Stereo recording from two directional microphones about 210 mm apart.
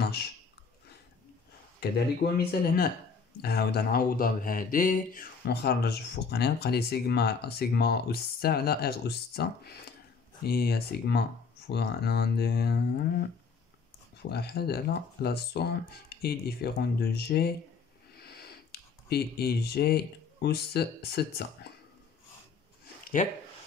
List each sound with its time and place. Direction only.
0.0 s a sound: 50° left (ahead or behind)
1.8 s speech: 50° left (ahead or behind)
14.3 s speech: 50° left (ahead or behind)
23.2 s speech: 35° left (ahead or behind)